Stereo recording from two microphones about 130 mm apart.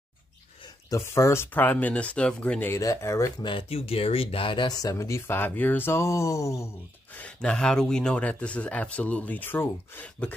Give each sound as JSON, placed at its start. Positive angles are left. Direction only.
{"t": 0.8, "sound": "a man's voice", "side_deg": 20}
{"t": 2.8, "sound": "speech", "side_deg": 25}
{"t": 3.4, "sound": "speech", "side_deg": 45}
{"t": 7.2, "sound": "a man's voice", "side_deg": 10}